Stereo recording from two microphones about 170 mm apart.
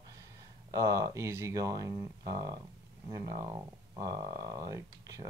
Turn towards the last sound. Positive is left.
turn(degrees=-20)  # may be behind; listen again after turning